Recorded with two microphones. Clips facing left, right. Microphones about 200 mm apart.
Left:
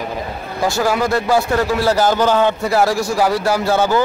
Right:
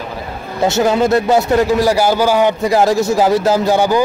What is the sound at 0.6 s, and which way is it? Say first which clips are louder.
A man's voice: right 4 dB; 20° right (ahead or behind).